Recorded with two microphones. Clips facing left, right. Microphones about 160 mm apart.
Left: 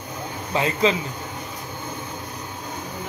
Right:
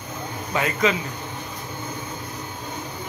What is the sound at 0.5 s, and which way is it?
Speech, 30° left (ahead or behind).